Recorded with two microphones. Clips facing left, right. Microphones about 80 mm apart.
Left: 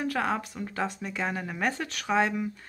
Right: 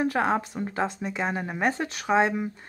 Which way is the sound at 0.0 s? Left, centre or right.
Right.